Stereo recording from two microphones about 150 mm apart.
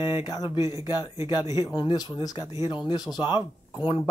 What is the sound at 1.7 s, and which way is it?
Speech, 25° left (ahead or behind).